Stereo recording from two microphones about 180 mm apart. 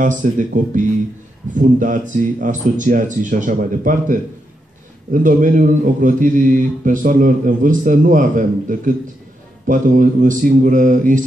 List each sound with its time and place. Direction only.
0.0 s a man's voice: 45° right (ahead or behind)